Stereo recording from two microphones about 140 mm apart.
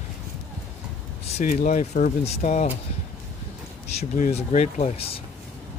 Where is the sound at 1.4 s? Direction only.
65° left (ahead or behind).